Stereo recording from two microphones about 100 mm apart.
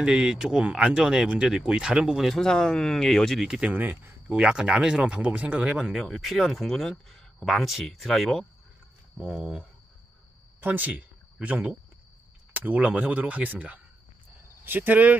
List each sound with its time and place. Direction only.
0.0 s speech: 10° right (ahead or behind)
3.8 s speech: 20° right (ahead or behind)
10.6 s speech: 15° right (ahead or behind)